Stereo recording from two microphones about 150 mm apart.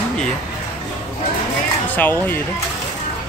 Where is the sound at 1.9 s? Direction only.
15° left (ahead or behind).